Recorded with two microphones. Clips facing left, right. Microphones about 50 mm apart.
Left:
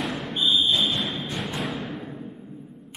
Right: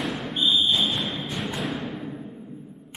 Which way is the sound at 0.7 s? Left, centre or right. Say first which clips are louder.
Even; centre.